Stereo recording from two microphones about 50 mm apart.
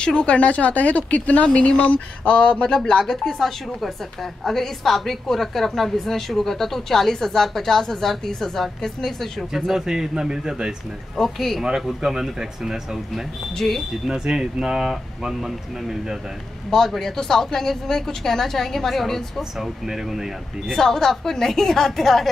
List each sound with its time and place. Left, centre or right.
0.0 s speech: left
3.0 s a woman's voice: centre
9.7 s speech: centre
11.1 s a woman's voice: centre
11.6 s speech: centre
13.6 s a woman's voice: centre
14.0 s speech: centre
16.7 s speech: centre
19.6 s speech: centre
20.6 s speech: centre